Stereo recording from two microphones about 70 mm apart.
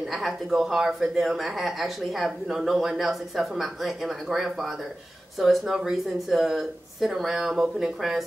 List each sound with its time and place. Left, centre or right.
0.5 s speech: centre